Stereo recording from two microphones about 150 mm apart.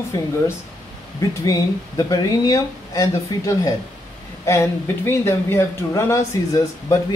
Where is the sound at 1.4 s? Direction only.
25° left (ahead or behind).